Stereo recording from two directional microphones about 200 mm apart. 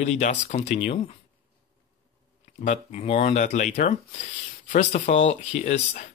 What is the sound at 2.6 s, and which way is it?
Speech, 35° left (ahead or behind).